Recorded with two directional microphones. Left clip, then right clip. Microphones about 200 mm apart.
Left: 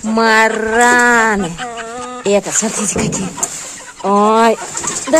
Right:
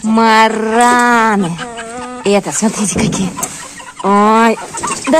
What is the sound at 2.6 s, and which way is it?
Speech, centre (ahead or behind).